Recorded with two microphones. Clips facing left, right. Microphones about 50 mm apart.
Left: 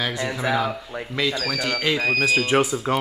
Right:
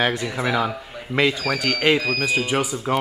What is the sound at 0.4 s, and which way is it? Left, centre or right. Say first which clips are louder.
Speech: even; right.